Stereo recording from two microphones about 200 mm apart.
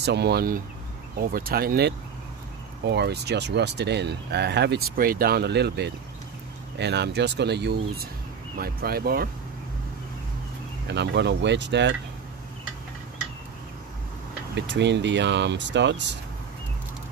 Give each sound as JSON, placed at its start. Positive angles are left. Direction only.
{"t": 0.0, "sound": "speech", "side_deg": -55}
{"t": 10.9, "sound": "speech", "side_deg": -60}
{"t": 14.5, "sound": "speech", "side_deg": -60}